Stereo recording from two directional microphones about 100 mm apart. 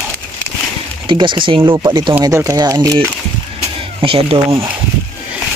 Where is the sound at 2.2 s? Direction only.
35° right (ahead or behind).